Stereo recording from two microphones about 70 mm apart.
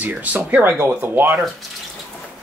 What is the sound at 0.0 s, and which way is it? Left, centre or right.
Speech, right.